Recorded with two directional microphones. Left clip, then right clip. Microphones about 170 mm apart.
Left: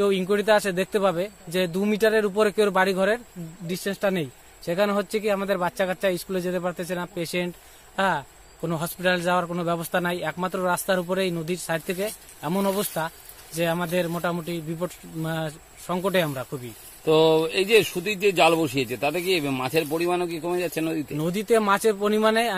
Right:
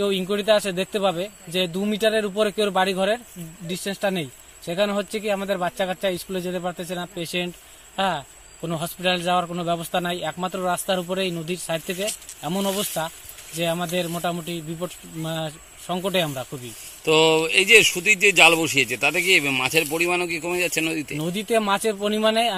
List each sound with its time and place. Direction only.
0.0 s a man's voice: 25° left (ahead or behind)
3.7 s a man's voice: 30° left (ahead or behind); by 16.4 s 10° left (ahead or behind)
17.0 s speech: 45° left (ahead or behind)
21.2 s a man's voice: 20° left (ahead or behind)